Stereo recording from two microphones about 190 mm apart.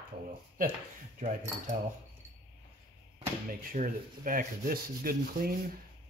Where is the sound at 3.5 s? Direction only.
45° right (ahead or behind).